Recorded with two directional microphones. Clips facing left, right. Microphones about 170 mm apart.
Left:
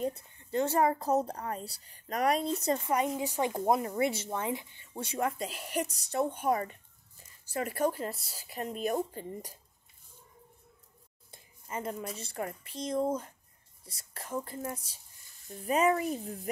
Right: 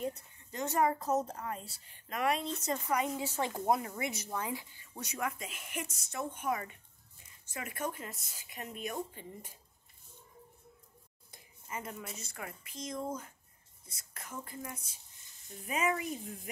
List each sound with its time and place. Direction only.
0.0 s a woman's voice: 30° left (ahead or behind)
3.3 s speech: 15° left (ahead or behind)
3.5 s a woman's voice: 25° left (ahead or behind)
11.3 s a sound: 30° left (ahead or behind)
12.2 s a woman's voice: 30° left (ahead or behind)